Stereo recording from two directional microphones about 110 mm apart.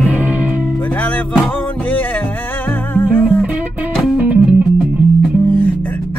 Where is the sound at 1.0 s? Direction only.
15° left (ahead or behind).